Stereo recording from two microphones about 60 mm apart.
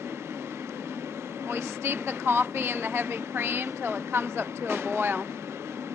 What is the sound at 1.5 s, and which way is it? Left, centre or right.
Speech, right.